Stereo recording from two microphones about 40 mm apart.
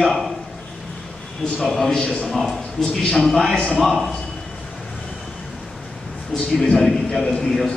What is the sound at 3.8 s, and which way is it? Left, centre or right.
Speech, centre.